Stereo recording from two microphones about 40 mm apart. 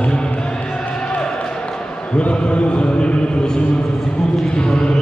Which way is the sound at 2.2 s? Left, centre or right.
Left.